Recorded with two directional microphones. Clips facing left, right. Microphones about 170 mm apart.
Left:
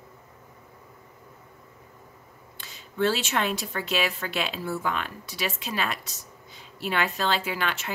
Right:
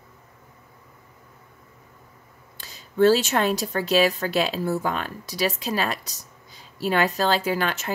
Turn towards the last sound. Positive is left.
turn(degrees=-40)  # may be behind; listen again after turning